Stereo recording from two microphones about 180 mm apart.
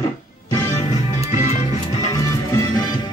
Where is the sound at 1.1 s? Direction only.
40° left (ahead or behind).